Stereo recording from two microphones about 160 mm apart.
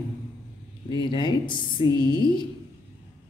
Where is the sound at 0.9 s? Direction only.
30° left (ahead or behind).